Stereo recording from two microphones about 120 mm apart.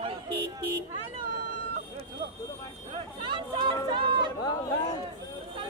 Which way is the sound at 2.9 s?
45° right (ahead or behind).